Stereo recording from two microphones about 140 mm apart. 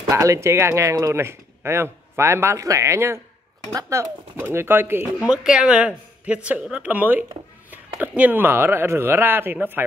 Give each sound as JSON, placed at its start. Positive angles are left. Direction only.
{"t": 0.1, "sound": "speech", "side_deg": -20}